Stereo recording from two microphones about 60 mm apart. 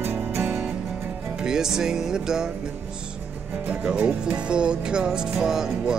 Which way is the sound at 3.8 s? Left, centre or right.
Centre.